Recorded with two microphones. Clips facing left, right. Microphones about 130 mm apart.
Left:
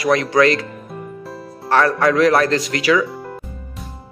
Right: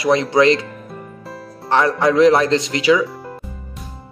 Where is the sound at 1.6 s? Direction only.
20° right (ahead or behind).